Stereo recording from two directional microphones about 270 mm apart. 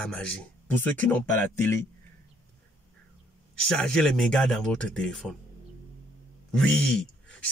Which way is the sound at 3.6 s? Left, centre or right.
Centre.